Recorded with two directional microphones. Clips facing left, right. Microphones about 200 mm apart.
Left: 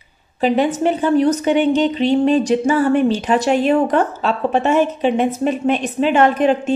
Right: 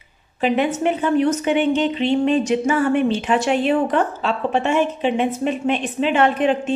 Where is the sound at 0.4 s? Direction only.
35° left (ahead or behind).